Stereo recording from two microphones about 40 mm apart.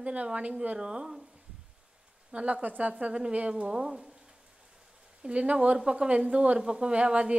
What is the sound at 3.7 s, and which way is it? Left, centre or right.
Speech, centre.